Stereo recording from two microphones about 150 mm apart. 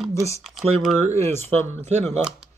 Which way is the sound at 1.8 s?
45° right (ahead or behind).